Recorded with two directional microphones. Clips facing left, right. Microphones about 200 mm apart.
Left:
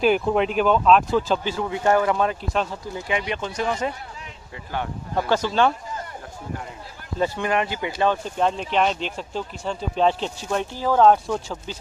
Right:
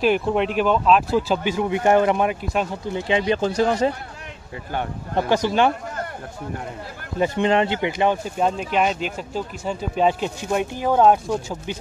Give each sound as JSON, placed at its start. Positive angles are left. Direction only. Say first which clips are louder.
{"t": 0.0, "sound": "speech", "louder": "even", "side_deg": 0}
{"t": 2.8, "sound": "speech", "louder": "right 5 dB", "side_deg": -25}
{"t": 5.1, "sound": "speech", "louder": "right 2 dB", "side_deg": -15}
{"t": 7.3, "sound": "speech", "louder": "right 5 dB", "side_deg": -25}